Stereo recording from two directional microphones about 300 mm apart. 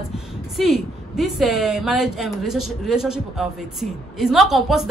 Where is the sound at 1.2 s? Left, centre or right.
Centre.